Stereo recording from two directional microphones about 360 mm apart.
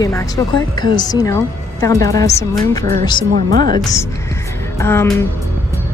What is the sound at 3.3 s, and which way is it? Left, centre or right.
Speech, right.